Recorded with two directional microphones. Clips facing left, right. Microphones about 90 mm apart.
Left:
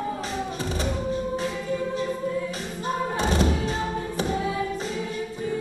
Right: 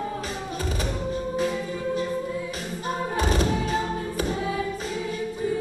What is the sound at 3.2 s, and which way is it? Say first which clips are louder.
Music: even; 30° left (ahead or behind).